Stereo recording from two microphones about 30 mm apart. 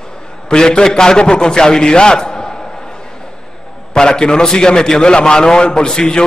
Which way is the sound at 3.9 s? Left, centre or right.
Left.